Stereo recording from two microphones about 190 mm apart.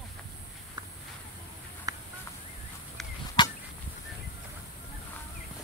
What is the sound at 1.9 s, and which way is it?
Chicken, 20° right (ahead or behind).